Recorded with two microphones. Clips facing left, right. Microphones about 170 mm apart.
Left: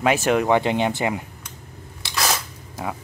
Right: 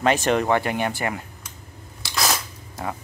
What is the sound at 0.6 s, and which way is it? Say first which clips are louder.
Speech: left 3 dB; 20° left (ahead or behind).